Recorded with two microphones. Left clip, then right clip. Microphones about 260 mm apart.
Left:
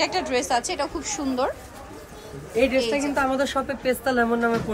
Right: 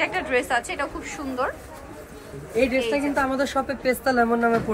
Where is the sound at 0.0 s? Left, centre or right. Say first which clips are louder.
Even; left.